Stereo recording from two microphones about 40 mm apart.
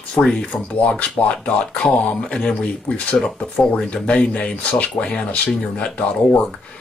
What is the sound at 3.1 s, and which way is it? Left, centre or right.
Speech, centre.